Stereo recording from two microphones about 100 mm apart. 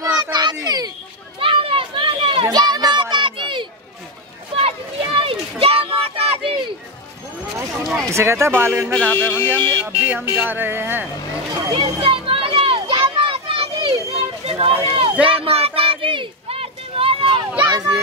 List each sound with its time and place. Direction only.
0.2 s children playing: 45° right (ahead or behind)
1.4 s a sound: 65° right (ahead or behind)
2.5 s a sound: 45° right (ahead or behind)
4.6 s children playing: 70° right (ahead or behind)
8.0 s speech: 30° right (ahead or behind)
8.9 s speech: 15° left (ahead or behind)
9.8 s speech: 20° right (ahead or behind)
11.7 s children playing: 65° right (ahead or behind)
14.4 s a sound: 70° right (ahead or behind)
14.9 s run: 70° right (ahead or behind)
15.2 s a sound: 75° right (ahead or behind)
17.6 s children playing: 40° right (ahead or behind)